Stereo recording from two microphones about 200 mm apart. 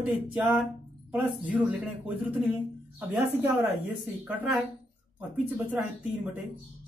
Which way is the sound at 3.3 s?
10° right (ahead or behind).